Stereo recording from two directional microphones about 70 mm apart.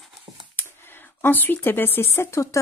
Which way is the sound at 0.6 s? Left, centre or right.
Left.